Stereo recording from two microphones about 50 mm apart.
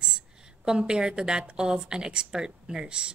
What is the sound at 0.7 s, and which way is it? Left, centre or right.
A woman's voice, centre.